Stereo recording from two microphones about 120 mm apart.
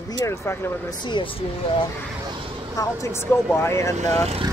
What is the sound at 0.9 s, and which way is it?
Speech, 40° left (ahead or behind).